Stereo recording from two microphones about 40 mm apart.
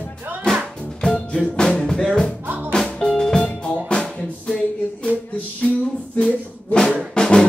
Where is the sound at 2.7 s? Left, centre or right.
Centre.